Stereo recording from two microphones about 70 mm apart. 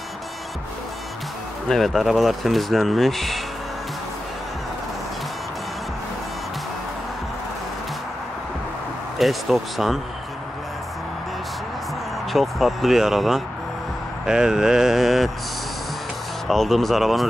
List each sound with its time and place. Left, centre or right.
1.7 s speech: centre
9.2 s speech: centre
12.3 s speech: centre
16.4 s speech: centre